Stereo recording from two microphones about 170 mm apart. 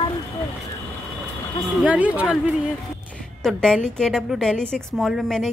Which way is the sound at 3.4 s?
5° left (ahead or behind).